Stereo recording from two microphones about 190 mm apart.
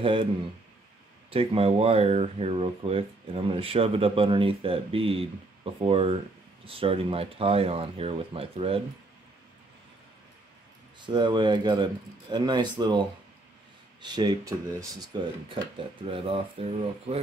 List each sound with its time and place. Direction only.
0.0 s speech: 25° right (ahead or behind)
1.3 s speech: 30° right (ahead or behind)
11.1 s speech: 25° right (ahead or behind)
14.0 s speech: 20° right (ahead or behind)
16.1 s speech: 30° right (ahead or behind)